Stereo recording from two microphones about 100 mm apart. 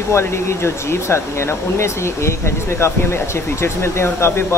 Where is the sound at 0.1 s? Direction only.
25° left (ahead or behind).